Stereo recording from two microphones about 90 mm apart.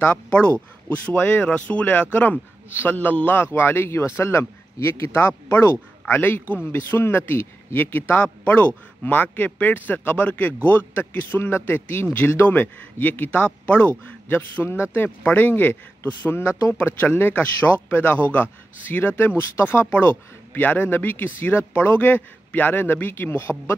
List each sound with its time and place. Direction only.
0.0 s speech: 15° left (ahead or behind)